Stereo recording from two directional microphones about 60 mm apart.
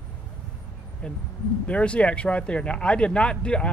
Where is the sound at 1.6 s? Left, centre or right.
Left.